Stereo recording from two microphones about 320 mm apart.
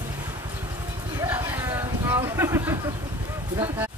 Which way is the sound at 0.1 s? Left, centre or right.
Centre.